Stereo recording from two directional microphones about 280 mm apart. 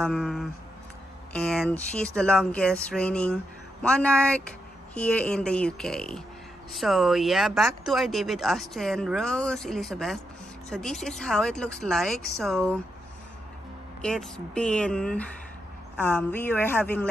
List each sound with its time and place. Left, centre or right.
0.0 s speech: centre
14.0 s speech: centre